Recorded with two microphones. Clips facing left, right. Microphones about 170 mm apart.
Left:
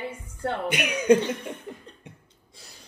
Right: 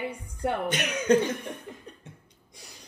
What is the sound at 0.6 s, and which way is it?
Speech, 10° left (ahead or behind).